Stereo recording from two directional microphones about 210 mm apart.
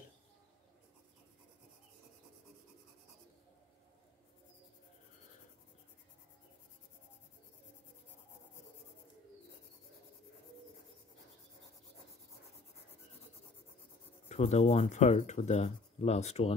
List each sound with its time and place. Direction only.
14.3 s speech: 30° left (ahead or behind)